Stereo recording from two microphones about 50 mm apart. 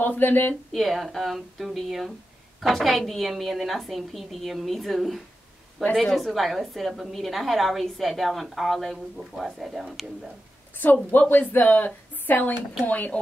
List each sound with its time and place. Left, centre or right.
0.0 s speech: left
0.7 s a woman's voice: centre
10.8 s speech: left
12.8 s speech: left